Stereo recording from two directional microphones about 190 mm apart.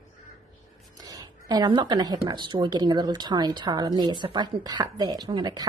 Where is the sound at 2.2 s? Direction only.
25° right (ahead or behind).